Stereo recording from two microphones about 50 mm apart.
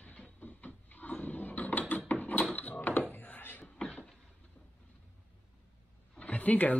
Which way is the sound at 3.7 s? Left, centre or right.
Centre.